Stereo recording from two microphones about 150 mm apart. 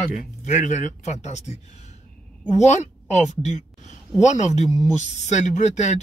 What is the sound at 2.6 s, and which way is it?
A woman's voice, 50° left (ahead or behind).